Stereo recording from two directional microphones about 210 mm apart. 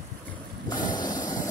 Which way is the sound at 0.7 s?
20° left (ahead or behind).